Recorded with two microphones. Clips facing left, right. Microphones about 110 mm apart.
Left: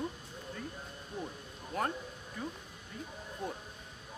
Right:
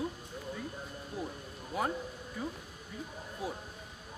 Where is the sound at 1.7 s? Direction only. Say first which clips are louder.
Right 1 dB; 5° right (ahead or behind).